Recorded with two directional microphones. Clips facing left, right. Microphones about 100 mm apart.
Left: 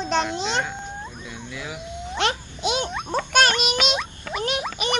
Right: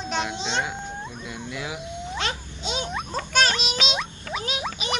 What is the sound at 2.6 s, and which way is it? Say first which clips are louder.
Speech: left 6 dB; 70° left (ahead or behind).